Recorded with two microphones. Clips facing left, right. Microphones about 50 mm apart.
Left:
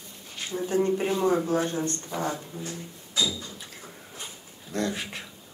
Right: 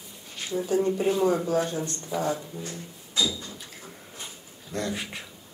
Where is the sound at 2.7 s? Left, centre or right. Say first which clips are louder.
Left 1 dB; centre.